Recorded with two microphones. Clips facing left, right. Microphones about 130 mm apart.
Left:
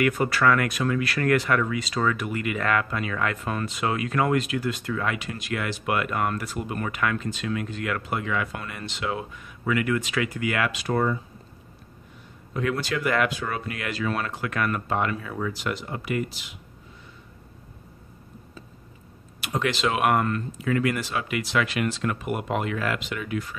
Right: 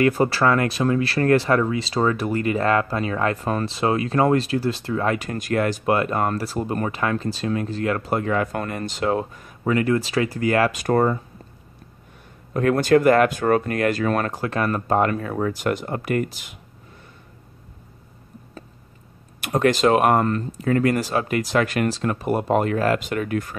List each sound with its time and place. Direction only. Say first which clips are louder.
0.0 s speech: right 4 dB; 30° right (ahead or behind); by 11.1 s 50° right (ahead or behind)
12.5 s speech: right 10 dB; 50° right (ahead or behind)
19.4 s speech: right 8 dB; 45° right (ahead or behind)